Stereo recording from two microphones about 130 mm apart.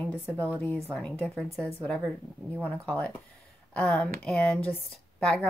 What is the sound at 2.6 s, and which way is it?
Speech, 10° left (ahead or behind).